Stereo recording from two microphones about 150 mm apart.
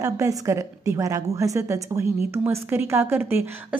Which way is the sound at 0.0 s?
20° right (ahead or behind).